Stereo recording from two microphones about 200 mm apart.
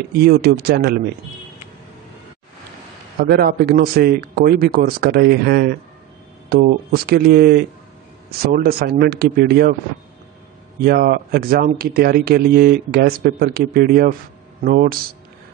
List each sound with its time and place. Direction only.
0.2 s speech: 50° right (ahead or behind)
3.2 s speech: 50° right (ahead or behind)
10.8 s speech: 50° right (ahead or behind)